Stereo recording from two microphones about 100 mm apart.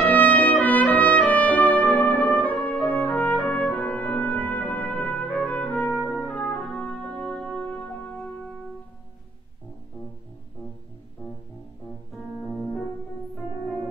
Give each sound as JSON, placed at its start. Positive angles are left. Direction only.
{"t": 0.0, "sound": "trumpet", "side_deg": 15}
{"t": 6.0, "sound": "brass instrument", "side_deg": 10}
{"t": 12.1, "sound": "music", "side_deg": 0}